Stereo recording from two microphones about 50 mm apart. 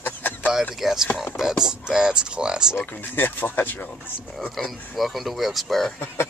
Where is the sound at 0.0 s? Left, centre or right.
Left.